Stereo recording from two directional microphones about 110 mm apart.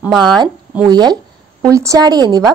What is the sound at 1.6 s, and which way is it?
Speech, 30° right (ahead or behind).